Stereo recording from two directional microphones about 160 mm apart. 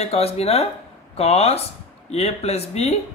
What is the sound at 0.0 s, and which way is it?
Speech, 40° left (ahead or behind).